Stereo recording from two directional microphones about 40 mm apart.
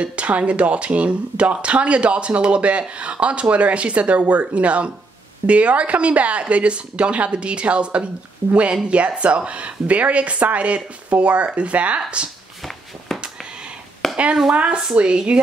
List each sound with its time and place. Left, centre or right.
0.0 s speech: right
13.1 s a sound: centre
14.1 s speech: right